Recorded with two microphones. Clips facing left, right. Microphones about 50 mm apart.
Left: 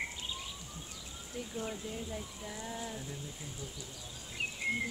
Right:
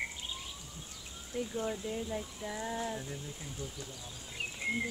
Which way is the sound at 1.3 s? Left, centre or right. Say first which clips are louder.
Right 6 dB; right.